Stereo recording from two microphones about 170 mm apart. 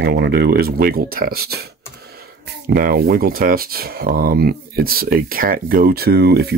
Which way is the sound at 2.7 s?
60° right (ahead or behind).